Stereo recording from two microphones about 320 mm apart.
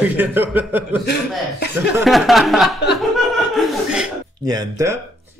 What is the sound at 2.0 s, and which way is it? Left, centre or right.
Speech, centre.